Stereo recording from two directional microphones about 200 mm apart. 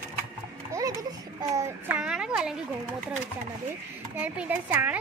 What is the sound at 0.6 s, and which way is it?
Music, 15° right (ahead or behind).